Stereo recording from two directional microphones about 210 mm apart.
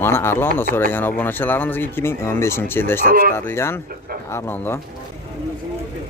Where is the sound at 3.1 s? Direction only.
40° right (ahead or behind).